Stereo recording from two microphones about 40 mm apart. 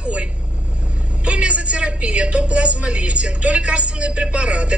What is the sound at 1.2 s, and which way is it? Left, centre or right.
A woman's voice, right.